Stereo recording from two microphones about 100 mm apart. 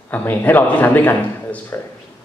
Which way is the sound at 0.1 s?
20° left (ahead or behind).